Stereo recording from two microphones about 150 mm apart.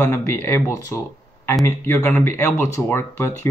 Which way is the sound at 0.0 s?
20° left (ahead or behind).